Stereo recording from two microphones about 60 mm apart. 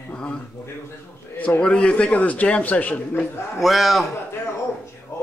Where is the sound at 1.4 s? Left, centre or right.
Centre.